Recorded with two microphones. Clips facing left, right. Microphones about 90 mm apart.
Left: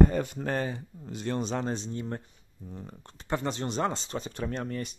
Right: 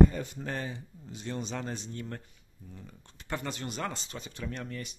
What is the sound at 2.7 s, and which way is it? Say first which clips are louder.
Speech: left 7 dB; 45° left (ahead or behind).